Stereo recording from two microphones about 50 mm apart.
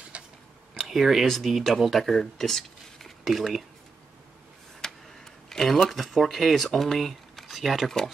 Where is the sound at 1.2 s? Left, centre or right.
Centre.